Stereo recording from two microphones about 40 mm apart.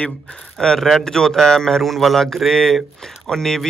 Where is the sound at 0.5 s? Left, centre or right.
Centre.